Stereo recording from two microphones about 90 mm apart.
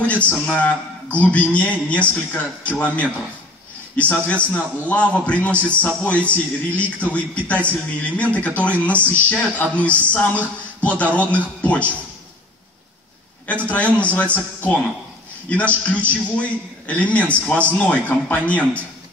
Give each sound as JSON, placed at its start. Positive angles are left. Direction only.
{"t": 0.0, "sound": "a man's voice", "side_deg": 15}
{"t": 4.1, "sound": "a man's voice", "side_deg": 15}
{"t": 13.5, "sound": "a man's voice", "side_deg": 15}